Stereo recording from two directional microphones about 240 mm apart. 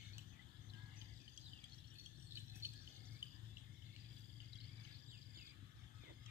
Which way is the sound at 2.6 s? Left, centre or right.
Centre.